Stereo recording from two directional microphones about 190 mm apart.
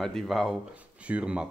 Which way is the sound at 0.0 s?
Centre (ahead or behind).